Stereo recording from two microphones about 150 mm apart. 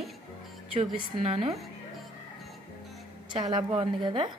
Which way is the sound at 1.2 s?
40° right (ahead or behind).